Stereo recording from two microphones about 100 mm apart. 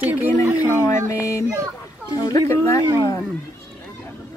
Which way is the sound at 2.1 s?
40° left (ahead or behind).